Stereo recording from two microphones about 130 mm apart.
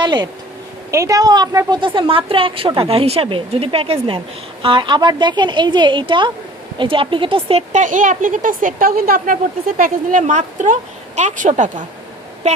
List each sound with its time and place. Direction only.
0.0 s a sound: 35° right (ahead or behind)
0.9 s a woman's voice: 25° right (ahead or behind)
1.8 s a woman's voice: 40° right (ahead or behind)
7.7 s a woman's voice: 75° right (ahead or behind)